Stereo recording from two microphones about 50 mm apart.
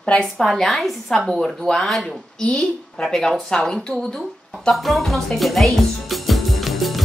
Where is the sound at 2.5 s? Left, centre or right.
Left.